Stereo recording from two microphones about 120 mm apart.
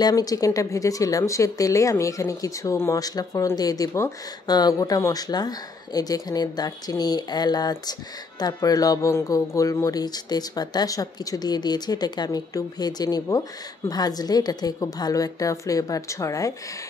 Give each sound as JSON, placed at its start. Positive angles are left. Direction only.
{"t": 0.0, "sound": "a woman's voice", "side_deg": 30}